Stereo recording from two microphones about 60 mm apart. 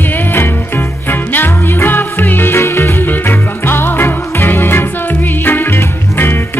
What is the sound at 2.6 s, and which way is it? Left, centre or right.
Music, left.